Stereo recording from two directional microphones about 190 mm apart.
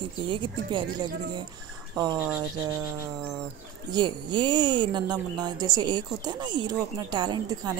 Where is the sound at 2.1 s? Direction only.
5° right (ahead or behind).